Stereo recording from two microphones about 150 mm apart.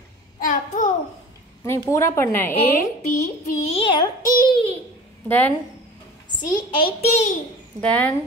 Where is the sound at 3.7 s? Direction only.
35° left (ahead or behind).